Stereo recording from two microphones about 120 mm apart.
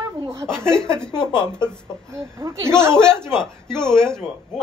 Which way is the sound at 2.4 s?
25° right (ahead or behind).